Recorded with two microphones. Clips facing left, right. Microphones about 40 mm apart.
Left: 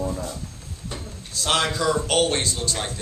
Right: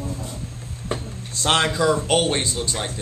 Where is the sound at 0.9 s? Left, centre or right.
Right.